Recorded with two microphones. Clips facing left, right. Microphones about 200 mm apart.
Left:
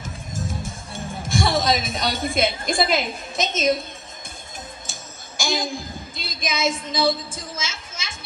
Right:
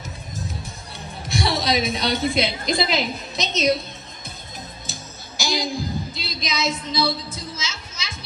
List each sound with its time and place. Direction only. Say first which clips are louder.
0.4 s speech: left 5 dB; 50° left (ahead or behind)
4.9 s music: right 2 dB; 50° left (ahead or behind)
5.4 s a sound: right 1 dB; 50° left (ahead or behind)